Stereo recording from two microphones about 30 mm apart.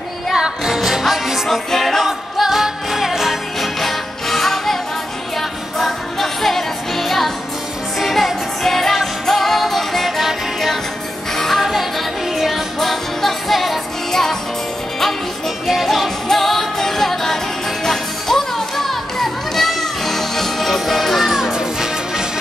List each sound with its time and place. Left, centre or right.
0.7 s music: centre
1.5 s music: centre
2.4 s music: centre
3.6 s music: centre
5.8 s music: centre
11.3 s music: centre
12.4 s music: centre
12.7 s music: centre
15.6 s music: centre
16.3 s music: centre
21.2 s music: centre